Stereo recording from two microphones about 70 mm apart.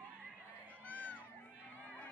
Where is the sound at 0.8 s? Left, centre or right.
Left.